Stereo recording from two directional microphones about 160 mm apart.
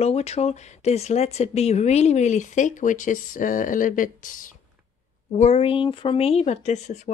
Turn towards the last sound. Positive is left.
turn(degrees=45)  # may be behind; listen again after turning